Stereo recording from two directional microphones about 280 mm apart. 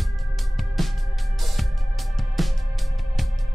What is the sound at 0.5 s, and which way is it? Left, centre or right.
Music, centre.